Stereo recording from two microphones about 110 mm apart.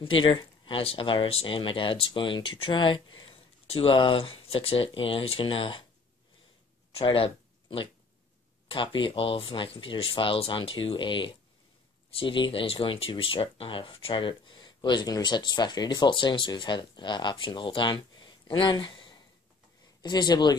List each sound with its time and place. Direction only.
0.0 s speech: 50° left (ahead or behind)
6.9 s a sound: 60° left (ahead or behind)
8.6 s speech: 50° left (ahead or behind)